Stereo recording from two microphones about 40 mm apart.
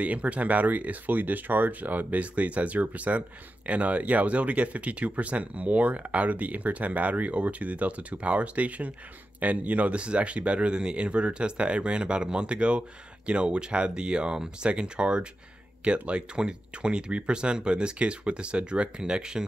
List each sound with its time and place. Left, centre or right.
0.0 s speech: right